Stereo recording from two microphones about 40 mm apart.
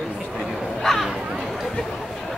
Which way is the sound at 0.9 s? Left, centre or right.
Centre.